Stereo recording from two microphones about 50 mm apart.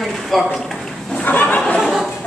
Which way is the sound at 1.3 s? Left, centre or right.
Left.